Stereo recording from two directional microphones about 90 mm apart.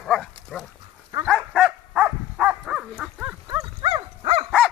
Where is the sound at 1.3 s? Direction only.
5° right (ahead or behind).